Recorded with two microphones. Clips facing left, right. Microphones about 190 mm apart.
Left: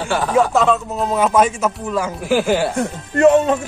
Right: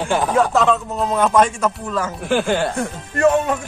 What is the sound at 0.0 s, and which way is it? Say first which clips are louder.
Speech: right 1 dB; 15° right (ahead or behind).